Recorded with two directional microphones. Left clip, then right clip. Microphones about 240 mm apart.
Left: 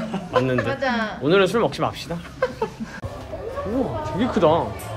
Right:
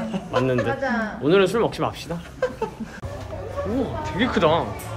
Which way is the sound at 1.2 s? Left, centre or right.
Centre.